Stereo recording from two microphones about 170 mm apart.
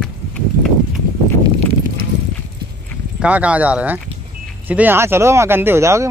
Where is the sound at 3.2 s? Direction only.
10° right (ahead or behind).